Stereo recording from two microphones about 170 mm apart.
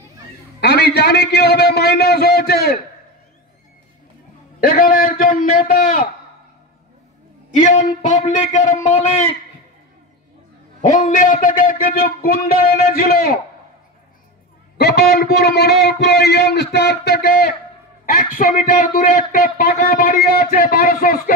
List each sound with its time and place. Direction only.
0.6 s a man's voice: 70° left (ahead or behind)
4.6 s a man's voice: 60° left (ahead or behind)
7.5 s a man's voice: 50° left (ahead or behind)
10.8 s a man's voice: 50° left (ahead or behind)
14.8 s a man's voice: 70° left (ahead or behind)